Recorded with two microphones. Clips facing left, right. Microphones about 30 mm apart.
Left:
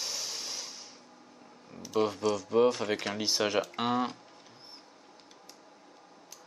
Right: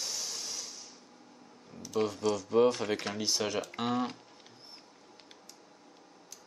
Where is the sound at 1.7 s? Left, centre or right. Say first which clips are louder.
Left 2 dB; centre.